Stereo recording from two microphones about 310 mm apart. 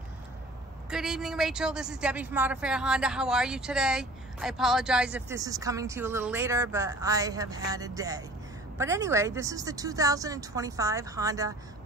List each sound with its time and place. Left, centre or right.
0.8 s a woman's voice: centre